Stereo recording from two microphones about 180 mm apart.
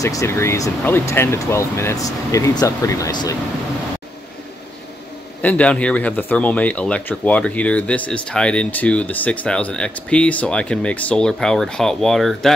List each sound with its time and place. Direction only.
0.0 s speech: 15° left (ahead or behind)
5.4 s speech: 10° left (ahead or behind)